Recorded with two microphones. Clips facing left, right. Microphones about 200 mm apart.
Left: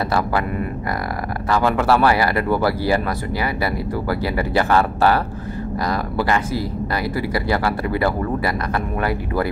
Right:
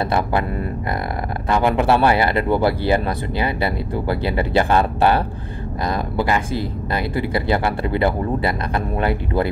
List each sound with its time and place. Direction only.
1.5 s speech: 20° right (ahead or behind)